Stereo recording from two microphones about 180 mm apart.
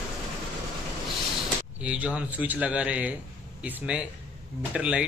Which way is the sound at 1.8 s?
5° right (ahead or behind).